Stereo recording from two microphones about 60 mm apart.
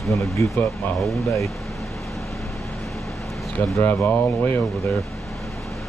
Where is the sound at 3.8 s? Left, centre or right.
Left.